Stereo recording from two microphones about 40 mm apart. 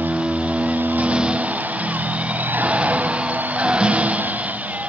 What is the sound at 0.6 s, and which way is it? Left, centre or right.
Vehicle, right.